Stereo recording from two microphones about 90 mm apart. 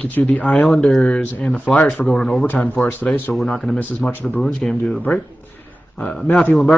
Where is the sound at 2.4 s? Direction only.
20° left (ahead or behind).